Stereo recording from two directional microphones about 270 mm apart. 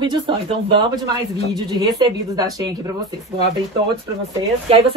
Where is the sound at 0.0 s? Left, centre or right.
Centre.